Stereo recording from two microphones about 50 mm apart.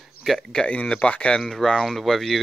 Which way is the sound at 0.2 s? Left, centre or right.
Centre.